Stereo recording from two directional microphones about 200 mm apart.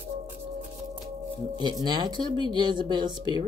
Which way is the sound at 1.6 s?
20° right (ahead or behind).